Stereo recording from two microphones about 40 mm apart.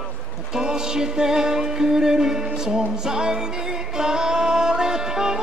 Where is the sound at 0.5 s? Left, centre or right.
Centre.